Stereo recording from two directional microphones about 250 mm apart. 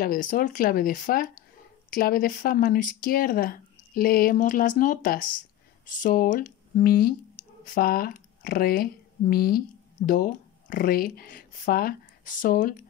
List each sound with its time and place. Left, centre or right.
0.0 s speech: left